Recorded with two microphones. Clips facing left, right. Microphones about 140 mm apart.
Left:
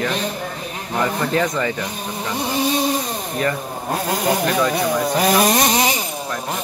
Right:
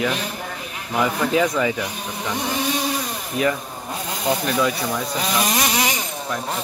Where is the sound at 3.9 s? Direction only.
65° left (ahead or behind); by 5.9 s 35° left (ahead or behind).